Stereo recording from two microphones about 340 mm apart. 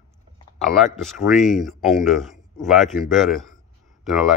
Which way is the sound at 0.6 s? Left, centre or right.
Centre.